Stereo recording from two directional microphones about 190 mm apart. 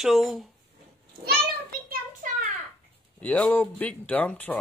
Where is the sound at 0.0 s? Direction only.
Centre (ahead or behind).